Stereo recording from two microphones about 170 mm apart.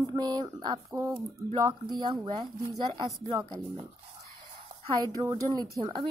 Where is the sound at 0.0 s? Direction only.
20° right (ahead or behind).